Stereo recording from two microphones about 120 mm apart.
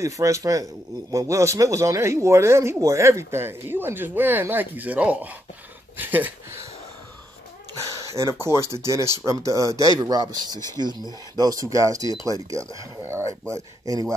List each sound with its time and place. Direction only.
0.0 s speech: 25° right (ahead or behind)
8.2 s speech: 25° right (ahead or behind)